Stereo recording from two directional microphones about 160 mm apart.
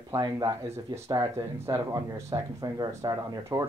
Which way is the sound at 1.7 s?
25° right (ahead or behind).